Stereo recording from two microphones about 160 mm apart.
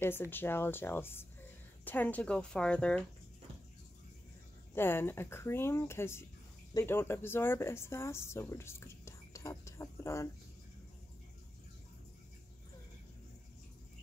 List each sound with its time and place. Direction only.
0.0 s speech: 15° left (ahead or behind)
4.7 s speech: 15° left (ahead or behind)